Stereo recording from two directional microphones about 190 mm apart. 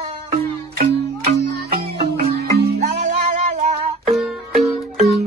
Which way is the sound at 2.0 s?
30° right (ahead or behind).